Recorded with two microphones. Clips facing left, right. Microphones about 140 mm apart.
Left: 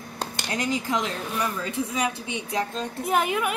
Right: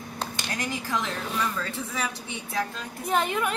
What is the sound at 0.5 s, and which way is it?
A woman's voice, 20° left (ahead or behind).